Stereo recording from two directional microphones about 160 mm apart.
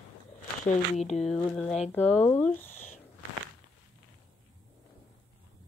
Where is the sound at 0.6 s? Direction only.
45° left (ahead or behind).